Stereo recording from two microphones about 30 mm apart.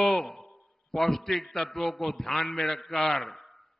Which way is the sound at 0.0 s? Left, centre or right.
Centre.